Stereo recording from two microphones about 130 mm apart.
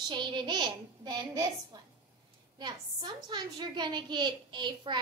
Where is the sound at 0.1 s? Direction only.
35° right (ahead or behind).